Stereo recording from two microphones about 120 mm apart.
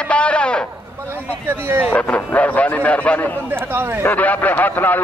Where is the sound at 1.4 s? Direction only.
15° right (ahead or behind).